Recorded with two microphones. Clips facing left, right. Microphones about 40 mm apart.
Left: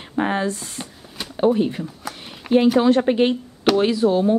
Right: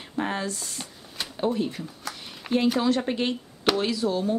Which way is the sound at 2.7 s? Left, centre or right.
Left.